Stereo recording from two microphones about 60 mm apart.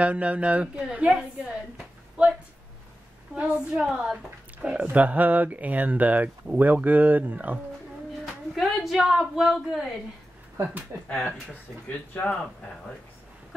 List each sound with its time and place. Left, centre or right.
0.0 s speech: right
3.3 s a woman's voice: centre
8.5 s a woman's voice: centre
12.1 s speech: left